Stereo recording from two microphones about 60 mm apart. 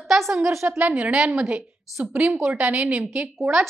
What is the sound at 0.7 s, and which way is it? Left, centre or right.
A woman's voice, right.